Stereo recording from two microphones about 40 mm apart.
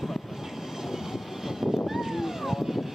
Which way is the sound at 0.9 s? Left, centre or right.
Centre.